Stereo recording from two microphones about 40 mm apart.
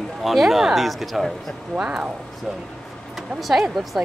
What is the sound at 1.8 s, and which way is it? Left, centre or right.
Speech, centre.